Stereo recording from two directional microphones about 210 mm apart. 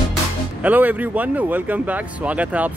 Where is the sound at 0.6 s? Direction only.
10° right (ahead or behind).